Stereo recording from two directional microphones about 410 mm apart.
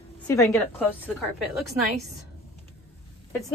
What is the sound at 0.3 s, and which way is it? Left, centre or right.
Speech, centre.